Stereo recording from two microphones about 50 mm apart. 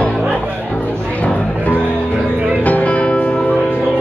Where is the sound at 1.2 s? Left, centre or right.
Left.